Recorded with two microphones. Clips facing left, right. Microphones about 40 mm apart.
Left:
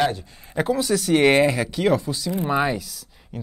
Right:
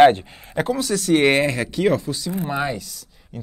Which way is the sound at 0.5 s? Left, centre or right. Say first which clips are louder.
Left 1 dB; centre.